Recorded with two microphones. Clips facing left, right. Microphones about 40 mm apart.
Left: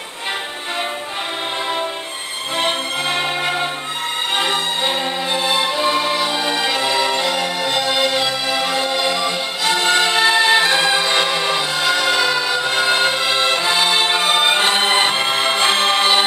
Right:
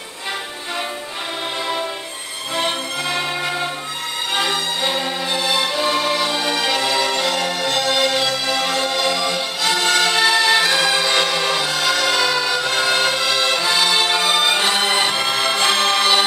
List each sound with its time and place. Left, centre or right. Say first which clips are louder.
2.5 s music: left 2 dB; left